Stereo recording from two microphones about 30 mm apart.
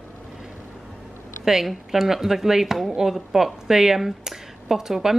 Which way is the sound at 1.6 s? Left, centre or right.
Centre.